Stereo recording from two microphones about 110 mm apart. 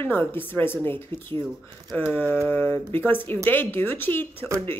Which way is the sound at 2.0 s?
15° left (ahead or behind).